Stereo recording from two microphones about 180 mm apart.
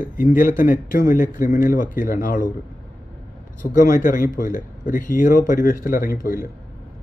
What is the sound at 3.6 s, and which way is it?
Speech, 50° left (ahead or behind).